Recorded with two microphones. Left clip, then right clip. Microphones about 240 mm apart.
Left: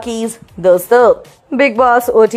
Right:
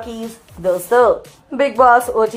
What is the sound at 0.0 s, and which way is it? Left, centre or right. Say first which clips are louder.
A woman's voice: left 8 dB; left.